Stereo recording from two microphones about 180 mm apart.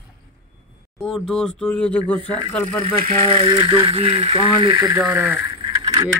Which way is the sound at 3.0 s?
35° right (ahead or behind).